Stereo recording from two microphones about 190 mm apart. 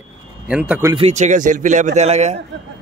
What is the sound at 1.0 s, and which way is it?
Speech, 40° right (ahead or behind).